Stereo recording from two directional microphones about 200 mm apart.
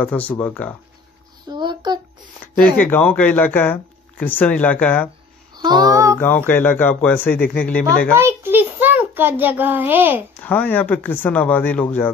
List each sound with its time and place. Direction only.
0.0 s speech: 5° left (ahead or behind)
1.5 s a sound: 20° right (ahead or behind)
2.8 s speech: 5° left (ahead or behind)
5.6 s a sound: 20° right (ahead or behind)
6.1 s speech: 10° left (ahead or behind)
7.3 s speech: 45° left (ahead or behind)
8.1 s a child's voice: 10° right (ahead or behind)
10.4 s speech: 10° left (ahead or behind)